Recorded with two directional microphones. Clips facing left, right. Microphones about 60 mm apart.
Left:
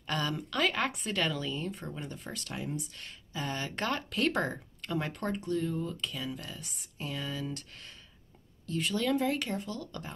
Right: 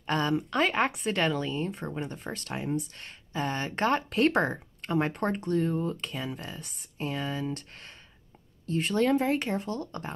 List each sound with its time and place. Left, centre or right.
0.0 s speech: right